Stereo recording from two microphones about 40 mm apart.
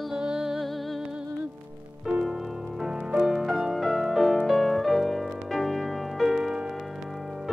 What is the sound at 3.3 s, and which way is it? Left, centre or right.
Music, centre.